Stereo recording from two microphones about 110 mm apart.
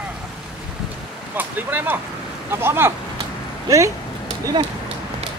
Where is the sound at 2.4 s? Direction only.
20° right (ahead or behind).